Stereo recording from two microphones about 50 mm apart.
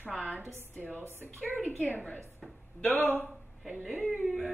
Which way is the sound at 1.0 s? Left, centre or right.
Right.